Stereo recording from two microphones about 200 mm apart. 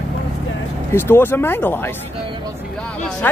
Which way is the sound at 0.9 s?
10° left (ahead or behind).